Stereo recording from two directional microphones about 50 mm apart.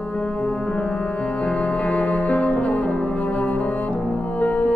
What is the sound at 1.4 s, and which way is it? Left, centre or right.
Music, left.